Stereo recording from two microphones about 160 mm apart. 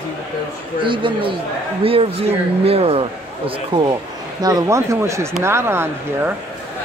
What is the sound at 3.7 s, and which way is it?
Speech, 30° right (ahead or behind).